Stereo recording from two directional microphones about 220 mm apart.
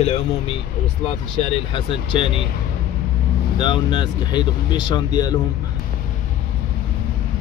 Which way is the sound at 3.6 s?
20° left (ahead or behind).